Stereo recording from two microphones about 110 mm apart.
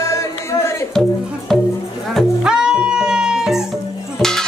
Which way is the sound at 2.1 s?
5° right (ahead or behind).